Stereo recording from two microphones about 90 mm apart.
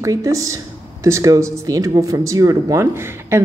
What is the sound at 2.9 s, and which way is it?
Speech, 25° right (ahead or behind).